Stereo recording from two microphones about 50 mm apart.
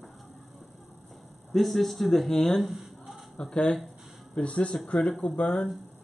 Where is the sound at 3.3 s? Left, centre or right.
Centre.